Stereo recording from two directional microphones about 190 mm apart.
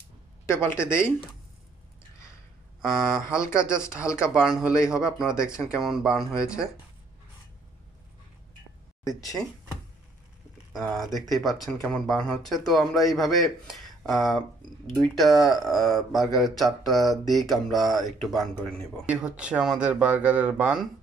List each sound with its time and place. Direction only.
0.5 s speech: 15° left (ahead or behind)
2.8 s speech: 5° right (ahead or behind)
3.3 s speech: 15° left (ahead or behind)
4.3 s speech: centre (ahead or behind)
9.0 s speech: 15° left (ahead or behind)
10.7 s speech: centre (ahead or behind)